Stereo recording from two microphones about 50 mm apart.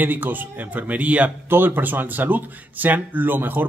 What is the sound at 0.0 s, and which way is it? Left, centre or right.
Speech, right.